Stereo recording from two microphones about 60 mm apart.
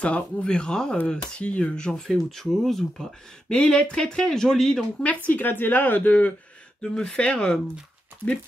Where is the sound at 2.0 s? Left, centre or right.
Centre.